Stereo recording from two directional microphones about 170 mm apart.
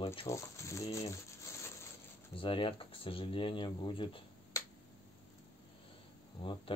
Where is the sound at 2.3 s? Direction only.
30° left (ahead or behind).